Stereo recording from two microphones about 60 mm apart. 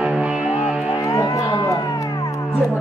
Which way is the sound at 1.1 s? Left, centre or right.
Left.